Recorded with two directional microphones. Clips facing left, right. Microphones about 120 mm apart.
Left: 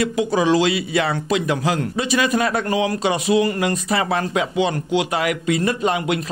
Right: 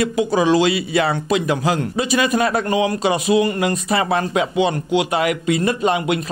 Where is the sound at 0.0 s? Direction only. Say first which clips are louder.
Right 1 dB; 30° right (ahead or behind).